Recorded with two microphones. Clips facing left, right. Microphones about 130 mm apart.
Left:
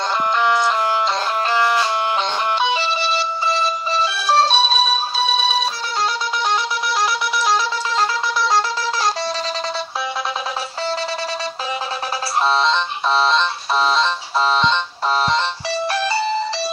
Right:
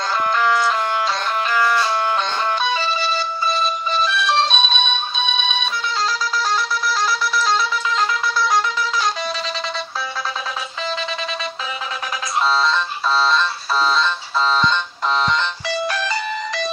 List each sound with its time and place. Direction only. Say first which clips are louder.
0.4 s music: left 1 dB; centre (ahead or behind)
1.5 s music: even; 20° left (ahead or behind); by 5.7 s 35° left (ahead or behind)
12.4 s music: left 1 dB; 25° left (ahead or behind)
15.2 s music: left 1 dB; 30° left (ahead or behind)